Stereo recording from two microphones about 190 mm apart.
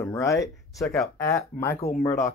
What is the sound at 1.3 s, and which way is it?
Speech, 15° left (ahead or behind).